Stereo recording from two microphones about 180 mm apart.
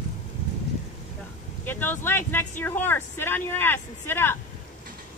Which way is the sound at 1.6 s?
10° left (ahead or behind).